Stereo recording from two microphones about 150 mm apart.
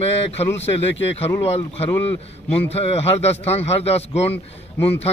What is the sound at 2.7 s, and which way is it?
A man's voice, 45° left (ahead or behind).